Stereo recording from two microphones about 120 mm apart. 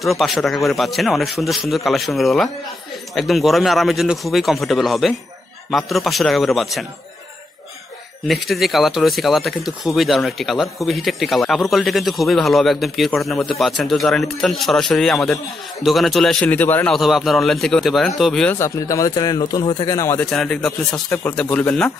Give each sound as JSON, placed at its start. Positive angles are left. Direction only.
{"t": 0.0, "sound": "speech", "side_deg": 0}
{"t": 8.3, "sound": "speech", "side_deg": 0}
{"t": 16.4, "sound": "speech", "side_deg": 15}
{"t": 16.9, "sound": "speech", "side_deg": 0}
{"t": 18.5, "sound": "speech", "side_deg": 25}
{"t": 20.2, "sound": "speech", "side_deg": 5}
{"t": 21.1, "sound": "speech", "side_deg": 20}
{"t": 21.4, "sound": "speech", "side_deg": 10}